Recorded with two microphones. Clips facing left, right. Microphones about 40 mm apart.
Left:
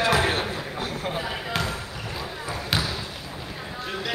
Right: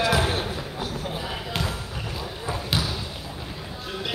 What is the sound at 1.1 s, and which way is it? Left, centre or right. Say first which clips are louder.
Basketball bounce: left 2 dB; centre.